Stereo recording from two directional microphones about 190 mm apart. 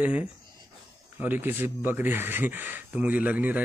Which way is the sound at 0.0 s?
10° right (ahead or behind).